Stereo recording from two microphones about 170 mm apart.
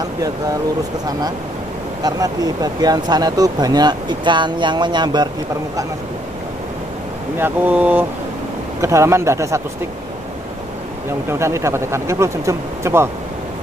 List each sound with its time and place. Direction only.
2.0 s speech: 20° right (ahead or behind)
7.3 s speech: 10° right (ahead or behind)
11.2 s speech: 15° right (ahead or behind)